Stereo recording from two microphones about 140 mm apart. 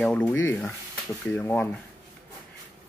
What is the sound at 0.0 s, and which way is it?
Speech, 10° left (ahead or behind).